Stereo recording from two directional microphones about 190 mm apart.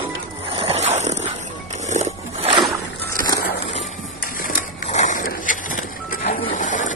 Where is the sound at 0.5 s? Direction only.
30° right (ahead or behind).